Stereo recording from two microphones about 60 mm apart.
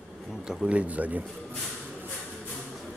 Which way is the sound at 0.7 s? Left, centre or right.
Right.